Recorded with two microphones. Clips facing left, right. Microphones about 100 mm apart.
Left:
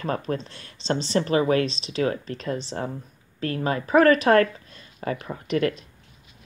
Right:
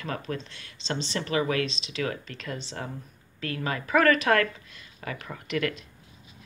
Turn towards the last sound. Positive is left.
turn(degrees=35)  # may be behind; listen again after turning